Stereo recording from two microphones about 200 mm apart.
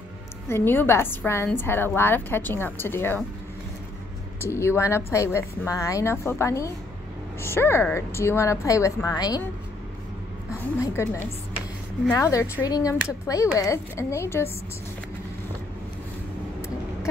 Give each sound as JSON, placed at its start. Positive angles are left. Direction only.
{"t": 0.5, "sound": "a woman's voice", "side_deg": 10}
{"t": 4.4, "sound": "a woman's voice", "side_deg": 10}
{"t": 10.8, "sound": "a woman's voice", "side_deg": 15}